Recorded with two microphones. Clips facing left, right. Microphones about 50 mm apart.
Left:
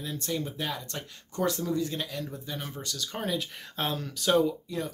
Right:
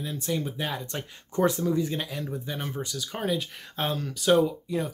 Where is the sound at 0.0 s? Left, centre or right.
Centre.